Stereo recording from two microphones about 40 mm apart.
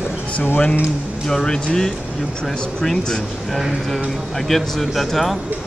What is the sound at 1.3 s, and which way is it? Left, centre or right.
Speech, centre.